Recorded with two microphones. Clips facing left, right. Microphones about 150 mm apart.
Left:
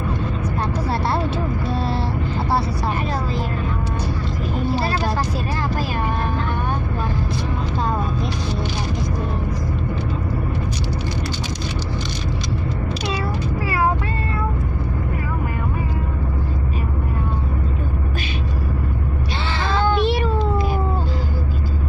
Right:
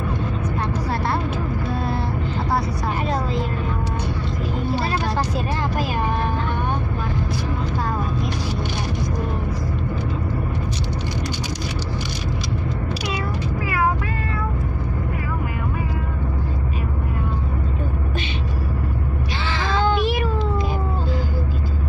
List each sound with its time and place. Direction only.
0.9 s vehicle: 35° left (ahead or behind)
19.5 s child singing: 30° left (ahead or behind)
20.0 s cat: 30° left (ahead or behind)